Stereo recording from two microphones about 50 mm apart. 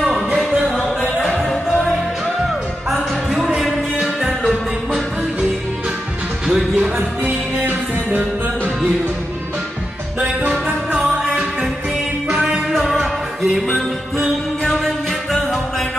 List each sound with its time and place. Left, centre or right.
1.4 s music: centre
6.4 s music: centre
7.2 s music: right
12.3 s music: centre
12.7 s music: centre